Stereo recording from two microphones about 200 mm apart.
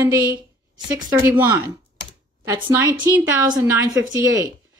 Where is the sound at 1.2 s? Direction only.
10° right (ahead or behind).